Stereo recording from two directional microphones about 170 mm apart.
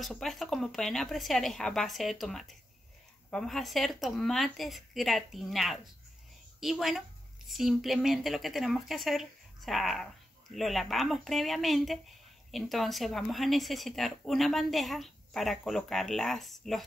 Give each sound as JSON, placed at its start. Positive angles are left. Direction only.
{"t": 0.0, "sound": "a woman's voice", "side_deg": 0}